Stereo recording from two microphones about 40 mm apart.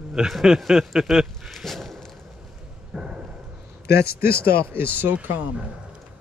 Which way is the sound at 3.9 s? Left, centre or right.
Right.